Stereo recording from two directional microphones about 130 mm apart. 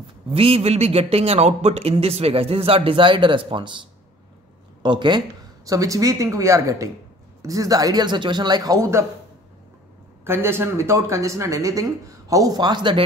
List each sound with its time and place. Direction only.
0.3 s a man's voice: 50° right (ahead or behind)
4.8 s speech: 35° right (ahead or behind)
5.7 s speech: 25° right (ahead or behind)
10.2 s speech: 20° right (ahead or behind); by 13.0 s 35° right (ahead or behind)